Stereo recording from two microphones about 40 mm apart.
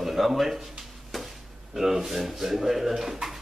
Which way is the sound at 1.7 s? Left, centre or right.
Centre.